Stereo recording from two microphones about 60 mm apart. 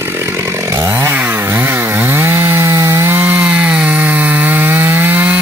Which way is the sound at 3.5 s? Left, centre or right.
Right.